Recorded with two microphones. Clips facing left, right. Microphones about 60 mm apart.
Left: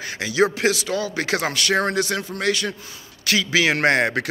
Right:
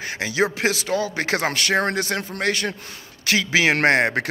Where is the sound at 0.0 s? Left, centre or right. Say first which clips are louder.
Left 2 dB; right.